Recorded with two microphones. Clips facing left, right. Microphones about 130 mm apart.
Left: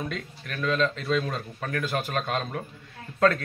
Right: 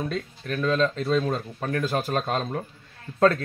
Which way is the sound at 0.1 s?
30° right (ahead or behind).